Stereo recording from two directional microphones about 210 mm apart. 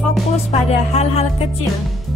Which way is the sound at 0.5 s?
30° left (ahead or behind).